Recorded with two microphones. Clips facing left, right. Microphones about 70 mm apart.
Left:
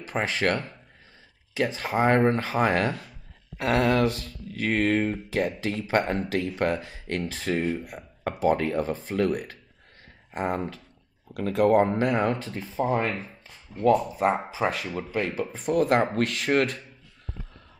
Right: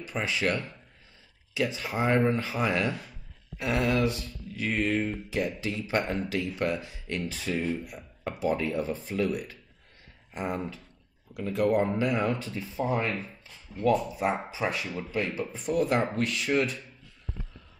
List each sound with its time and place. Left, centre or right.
0.1 s speech: left
13.1 s speech: centre
14.1 s speech: left